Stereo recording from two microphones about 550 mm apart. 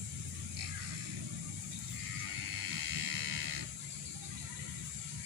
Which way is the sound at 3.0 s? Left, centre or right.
Right.